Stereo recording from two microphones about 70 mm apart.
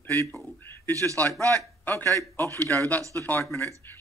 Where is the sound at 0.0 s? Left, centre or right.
Left.